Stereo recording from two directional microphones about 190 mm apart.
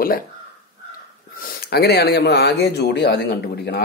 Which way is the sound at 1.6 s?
60° left (ahead or behind).